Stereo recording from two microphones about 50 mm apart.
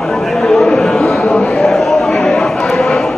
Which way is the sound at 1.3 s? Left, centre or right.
Centre.